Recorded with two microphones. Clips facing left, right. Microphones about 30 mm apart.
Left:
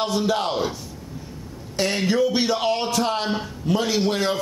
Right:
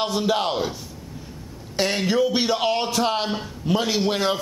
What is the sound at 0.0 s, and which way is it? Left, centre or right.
Speech, centre.